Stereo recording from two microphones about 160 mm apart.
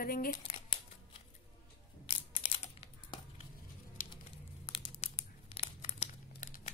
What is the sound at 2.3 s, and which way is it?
Crumpling, 35° left (ahead or behind).